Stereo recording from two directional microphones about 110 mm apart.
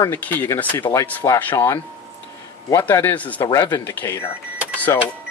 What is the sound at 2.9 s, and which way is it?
Speech, 20° left (ahead or behind).